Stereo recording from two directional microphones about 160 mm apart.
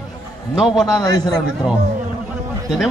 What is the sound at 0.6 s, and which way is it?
Speech, 5° right (ahead or behind).